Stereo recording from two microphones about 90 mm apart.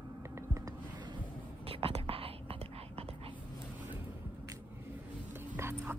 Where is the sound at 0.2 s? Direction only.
30° right (ahead or behind).